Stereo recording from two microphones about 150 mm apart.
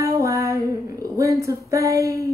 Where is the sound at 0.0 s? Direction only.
20° right (ahead or behind).